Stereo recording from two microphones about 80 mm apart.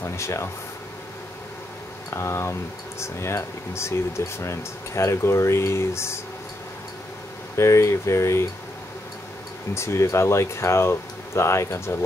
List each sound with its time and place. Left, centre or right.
0.0 s a sound: left
2.1 s speech: left
7.5 s speech: left
9.8 s speech: left